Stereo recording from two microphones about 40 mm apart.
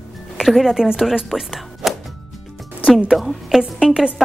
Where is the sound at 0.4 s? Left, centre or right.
Centre.